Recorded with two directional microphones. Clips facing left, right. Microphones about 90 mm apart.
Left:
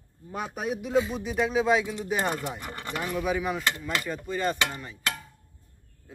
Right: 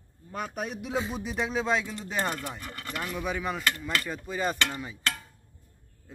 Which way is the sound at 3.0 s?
10° left (ahead or behind).